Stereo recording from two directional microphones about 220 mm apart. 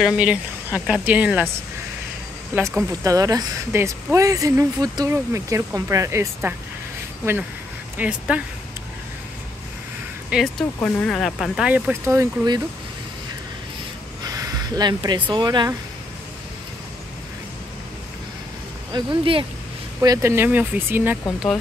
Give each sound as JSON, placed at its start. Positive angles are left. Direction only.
{"t": 0.0, "sound": "speech", "side_deg": -5}
{"t": 2.5, "sound": "speech", "side_deg": -10}
{"t": 8.0, "sound": "speech", "side_deg": -5}
{"t": 10.3, "sound": "speech", "side_deg": 5}
{"t": 14.2, "sound": "a sound", "side_deg": -15}
{"t": 15.3, "sound": "speech", "side_deg": -20}
{"t": 18.9, "sound": "speech", "side_deg": -25}
{"t": 20.0, "sound": "speech", "side_deg": -15}